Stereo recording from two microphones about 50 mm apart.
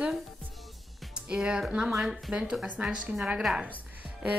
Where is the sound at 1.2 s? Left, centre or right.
Centre.